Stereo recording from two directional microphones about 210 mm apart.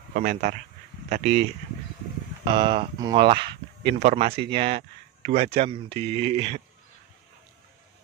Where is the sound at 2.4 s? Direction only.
25° right (ahead or behind).